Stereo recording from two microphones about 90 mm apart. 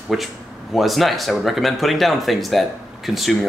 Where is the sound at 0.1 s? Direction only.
5° right (ahead or behind).